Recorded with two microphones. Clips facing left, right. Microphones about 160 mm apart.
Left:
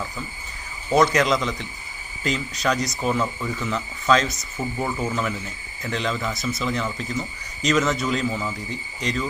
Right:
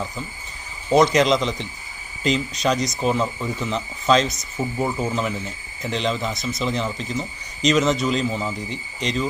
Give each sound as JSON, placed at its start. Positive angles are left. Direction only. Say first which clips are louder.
{"t": 0.8, "sound": "speech", "louder": "right 3 dB", "side_deg": -20}